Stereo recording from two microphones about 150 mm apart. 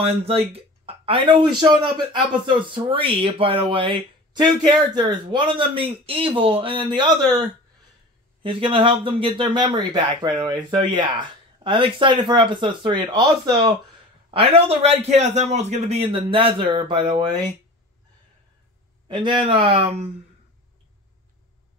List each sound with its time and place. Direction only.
0.0 s speech: 40° right (ahead or behind)
19.0 s speech: 35° right (ahead or behind)